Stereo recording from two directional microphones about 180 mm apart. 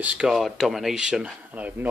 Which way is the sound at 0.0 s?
5° right (ahead or behind).